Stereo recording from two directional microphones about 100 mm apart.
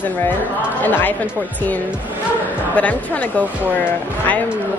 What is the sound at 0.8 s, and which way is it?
Speech, 20° left (ahead or behind).